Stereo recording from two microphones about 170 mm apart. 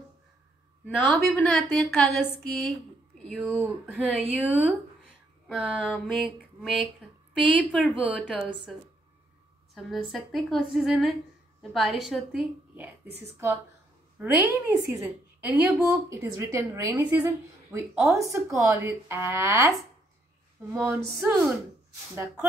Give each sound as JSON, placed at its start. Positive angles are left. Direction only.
{"t": 0.8, "sound": "a woman's voice", "side_deg": 10}
{"t": 3.4, "sound": "a woman's voice", "side_deg": -10}
{"t": 9.8, "sound": "a woman's voice", "side_deg": 0}
{"t": 14.1, "sound": "a woman's voice", "side_deg": -10}
{"t": 14.9, "sound": "a woman's voice", "side_deg": -5}
{"t": 20.7, "sound": "a woman's voice", "side_deg": -15}
{"t": 21.2, "sound": "a woman's voice", "side_deg": 0}